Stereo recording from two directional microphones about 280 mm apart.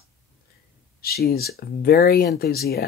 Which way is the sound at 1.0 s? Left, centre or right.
Left.